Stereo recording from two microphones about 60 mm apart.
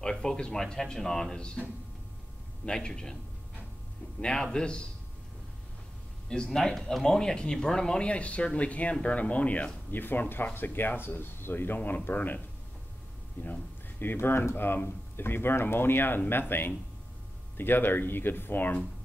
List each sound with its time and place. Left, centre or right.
0.0 s speech: centre
2.6 s speech: centre
4.2 s speech: centre
6.2 s speech: centre
9.8 s speech: left
13.4 s speech: left